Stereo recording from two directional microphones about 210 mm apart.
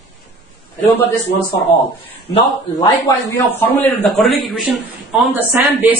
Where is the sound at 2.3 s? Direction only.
20° left (ahead or behind).